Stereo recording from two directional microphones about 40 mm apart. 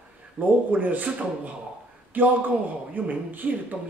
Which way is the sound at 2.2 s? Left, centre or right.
Right.